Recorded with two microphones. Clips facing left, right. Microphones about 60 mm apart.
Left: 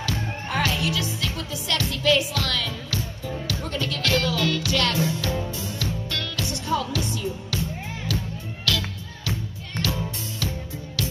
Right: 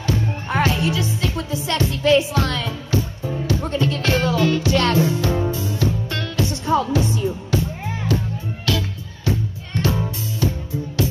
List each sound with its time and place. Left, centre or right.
0.0 s music: right